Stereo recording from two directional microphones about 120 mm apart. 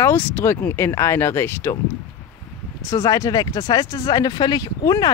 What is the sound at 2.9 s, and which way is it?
Speech, 25° left (ahead or behind).